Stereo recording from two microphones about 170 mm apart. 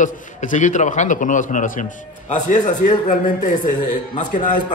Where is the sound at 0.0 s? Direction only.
50° left (ahead or behind).